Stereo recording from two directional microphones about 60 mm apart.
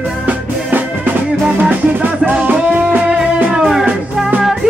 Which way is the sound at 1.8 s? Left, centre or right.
Right.